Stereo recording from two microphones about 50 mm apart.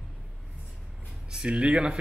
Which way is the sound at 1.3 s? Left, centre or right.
Right.